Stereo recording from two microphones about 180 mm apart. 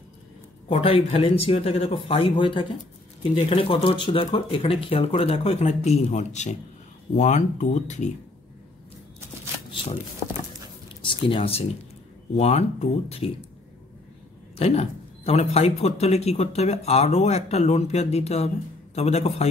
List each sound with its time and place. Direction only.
0.7 s speech: 30° left (ahead or behind)
11.1 s speech: 30° left (ahead or behind)
14.6 s speech: 35° left (ahead or behind)